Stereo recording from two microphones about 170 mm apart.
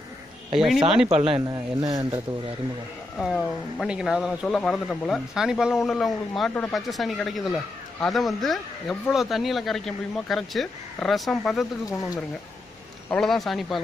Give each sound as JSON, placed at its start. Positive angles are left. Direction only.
{"t": 0.6, "sound": "speech", "side_deg": 0}
{"t": 1.1, "sound": "speech", "side_deg": -35}
{"t": 1.5, "sound": "a man's voice", "side_deg": -20}
{"t": 3.2, "sound": "speech", "side_deg": 0}
{"t": 13.1, "sound": "speech", "side_deg": 0}